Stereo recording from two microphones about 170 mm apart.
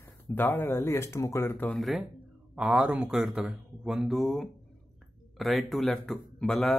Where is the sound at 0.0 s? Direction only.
10° left (ahead or behind).